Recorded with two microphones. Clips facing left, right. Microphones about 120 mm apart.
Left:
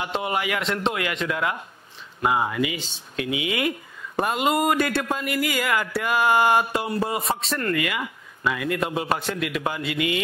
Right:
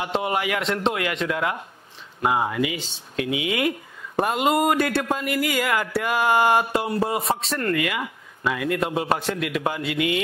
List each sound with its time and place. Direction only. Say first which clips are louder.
0.0 s speech: right 2 dB; 50° right (ahead or behind)